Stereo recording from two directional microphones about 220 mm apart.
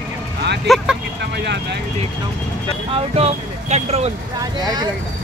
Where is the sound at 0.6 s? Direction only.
Centre (ahead or behind).